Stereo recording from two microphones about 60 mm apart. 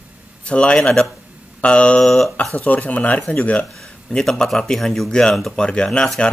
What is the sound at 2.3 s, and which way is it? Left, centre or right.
Speech, left.